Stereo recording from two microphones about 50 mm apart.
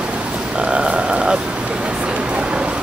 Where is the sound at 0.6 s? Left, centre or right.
Centre.